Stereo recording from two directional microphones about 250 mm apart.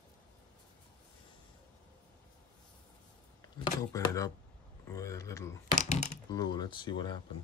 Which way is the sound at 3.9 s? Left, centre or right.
Centre.